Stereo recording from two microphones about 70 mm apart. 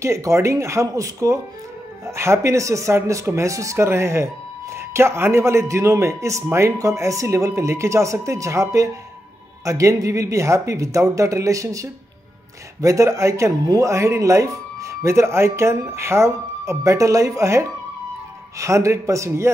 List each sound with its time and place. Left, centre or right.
0.0 s a man's voice: right